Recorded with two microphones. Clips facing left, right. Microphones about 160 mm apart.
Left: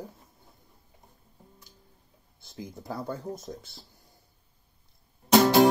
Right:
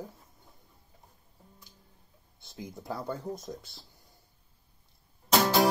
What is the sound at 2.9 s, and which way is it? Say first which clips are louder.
Speech: left 2 dB; 10° left (ahead or behind).